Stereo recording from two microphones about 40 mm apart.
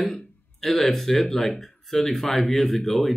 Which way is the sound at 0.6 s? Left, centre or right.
Centre.